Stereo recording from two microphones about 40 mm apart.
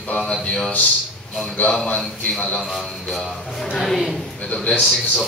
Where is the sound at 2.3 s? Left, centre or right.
Centre.